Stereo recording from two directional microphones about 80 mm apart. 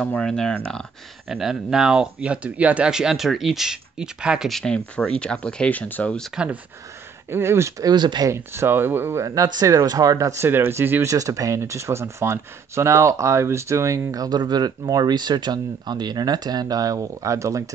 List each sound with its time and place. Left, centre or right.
0.1 s speech: centre
1.3 s speech: centre
4.5 s speech: centre; by 6.1 s left
6.3 s speech: centre
7.2 s speech: right
7.8 s speech: right
8.3 s speech: right
9.2 s speech: right
10.3 s speech: right
11.1 s speech: right